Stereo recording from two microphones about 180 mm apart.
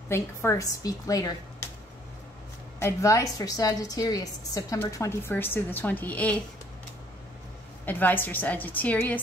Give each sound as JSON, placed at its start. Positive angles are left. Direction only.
{"t": 0.1, "sound": "a woman's voice", "side_deg": 15}
{"t": 2.8, "sound": "a woman's voice", "side_deg": 15}
{"t": 7.8, "sound": "a woman's voice", "side_deg": 10}